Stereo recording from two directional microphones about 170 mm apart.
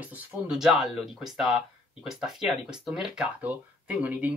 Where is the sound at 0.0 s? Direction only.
10° right (ahead or behind).